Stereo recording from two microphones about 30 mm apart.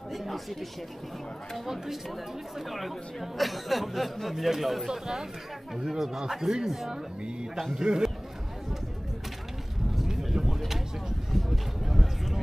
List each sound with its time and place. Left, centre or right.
0.1 s speech: centre
2.7 s speech: centre
4.8 s a man's voice: centre
10.0 s vehicle: centre
11.8 s a sound: centre